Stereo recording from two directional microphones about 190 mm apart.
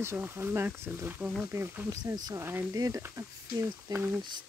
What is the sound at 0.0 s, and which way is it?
Speech, 15° right (ahead or behind).